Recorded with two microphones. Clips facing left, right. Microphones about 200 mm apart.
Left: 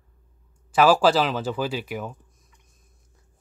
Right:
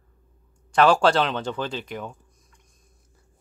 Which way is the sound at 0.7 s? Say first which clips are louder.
Even; 5° left (ahead or behind).